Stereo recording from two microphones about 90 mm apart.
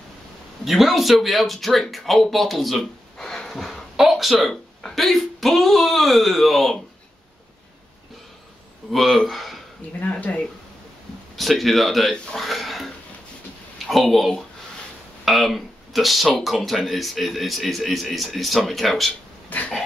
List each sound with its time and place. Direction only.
0.7 s speech: centre (ahead or behind)
8.9 s speech: centre (ahead or behind)
9.9 s speech: 20° left (ahead or behind)
11.3 s speech: centre (ahead or behind)